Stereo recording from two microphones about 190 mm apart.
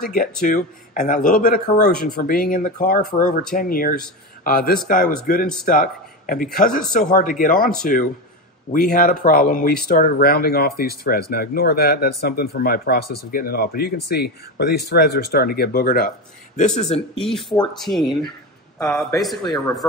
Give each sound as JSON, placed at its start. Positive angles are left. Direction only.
{"t": 0.0, "sound": "a man's voice", "side_deg": 50}
{"t": 17.7, "sound": "speech", "side_deg": 0}